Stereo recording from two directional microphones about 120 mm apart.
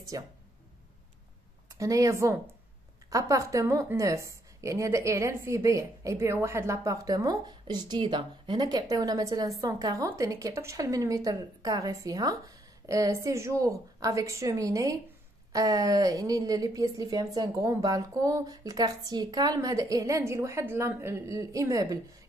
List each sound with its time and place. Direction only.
0.1 s a woman's voice: 30° right (ahead or behind)
1.7 s a woman's voice: 30° right (ahead or behind)